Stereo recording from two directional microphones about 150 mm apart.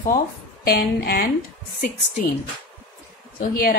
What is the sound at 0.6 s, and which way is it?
Speech, 90° left.